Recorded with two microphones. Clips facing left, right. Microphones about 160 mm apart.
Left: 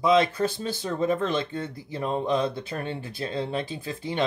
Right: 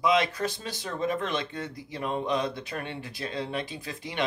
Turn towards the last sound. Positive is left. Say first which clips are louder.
# left 4 dB
turn(degrees=30)  # may be behind; listen again after turning